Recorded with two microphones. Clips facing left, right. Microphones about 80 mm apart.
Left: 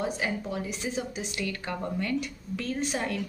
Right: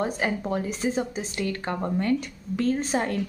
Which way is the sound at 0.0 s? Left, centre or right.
Right.